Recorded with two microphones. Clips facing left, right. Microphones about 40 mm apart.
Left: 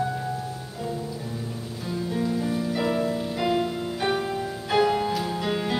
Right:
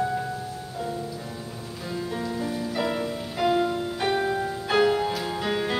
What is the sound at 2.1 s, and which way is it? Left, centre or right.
Music, centre.